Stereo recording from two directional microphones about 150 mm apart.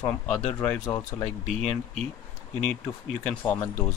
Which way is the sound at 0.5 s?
5° left (ahead or behind).